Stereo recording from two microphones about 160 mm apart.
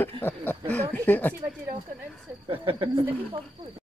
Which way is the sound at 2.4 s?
35° right (ahead or behind).